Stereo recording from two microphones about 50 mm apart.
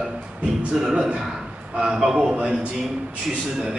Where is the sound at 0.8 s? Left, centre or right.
Centre.